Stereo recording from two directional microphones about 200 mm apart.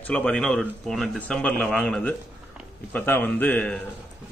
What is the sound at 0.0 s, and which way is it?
A man's voice, 5° left (ahead or behind).